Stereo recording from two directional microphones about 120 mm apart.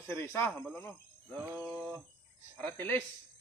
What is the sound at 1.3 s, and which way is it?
Speech, 15° right (ahead or behind).